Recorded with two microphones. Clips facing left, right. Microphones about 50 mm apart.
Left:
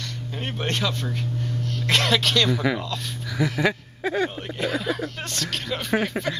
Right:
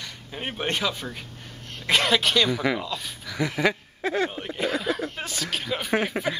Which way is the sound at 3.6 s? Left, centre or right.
Centre.